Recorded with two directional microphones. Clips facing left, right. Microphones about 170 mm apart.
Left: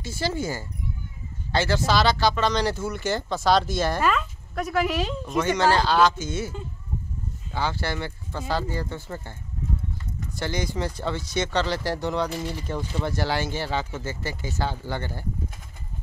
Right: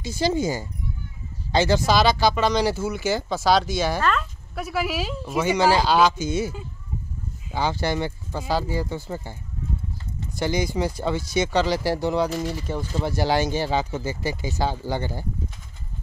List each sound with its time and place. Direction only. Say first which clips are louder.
0.0 s speech: right 5 dB; 15° right (ahead or behind)